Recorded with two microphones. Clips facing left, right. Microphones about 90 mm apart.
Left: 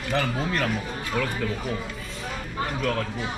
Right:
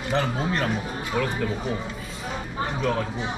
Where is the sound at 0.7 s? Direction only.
10° right (ahead or behind).